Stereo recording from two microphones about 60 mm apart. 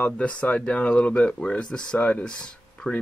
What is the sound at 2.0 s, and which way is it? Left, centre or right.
Speech, left.